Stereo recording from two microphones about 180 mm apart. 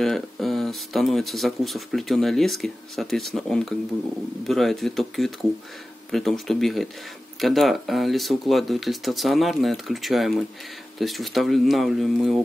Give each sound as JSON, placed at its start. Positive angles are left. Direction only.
{"t": 0.0, "sound": "speech", "side_deg": 0}